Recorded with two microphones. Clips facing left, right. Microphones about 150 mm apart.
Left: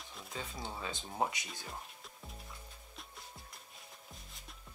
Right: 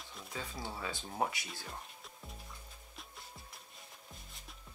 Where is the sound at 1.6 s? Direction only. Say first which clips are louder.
Even; centre (ahead or behind).